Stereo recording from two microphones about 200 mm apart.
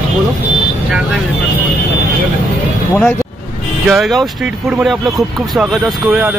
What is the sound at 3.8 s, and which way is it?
Speech, centre (ahead or behind).